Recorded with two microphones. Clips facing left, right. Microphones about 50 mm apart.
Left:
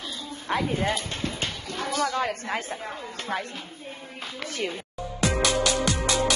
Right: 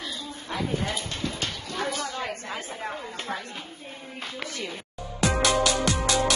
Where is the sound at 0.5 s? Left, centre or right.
Left.